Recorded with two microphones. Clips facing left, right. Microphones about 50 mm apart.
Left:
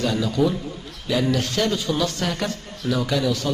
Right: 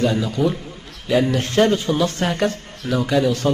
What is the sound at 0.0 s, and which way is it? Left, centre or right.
A man's voice, right.